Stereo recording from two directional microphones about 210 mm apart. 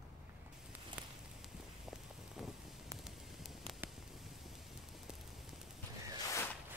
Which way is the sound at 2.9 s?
Centre (ahead or behind).